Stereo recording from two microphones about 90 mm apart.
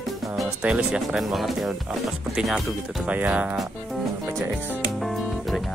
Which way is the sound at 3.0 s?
15° right (ahead or behind).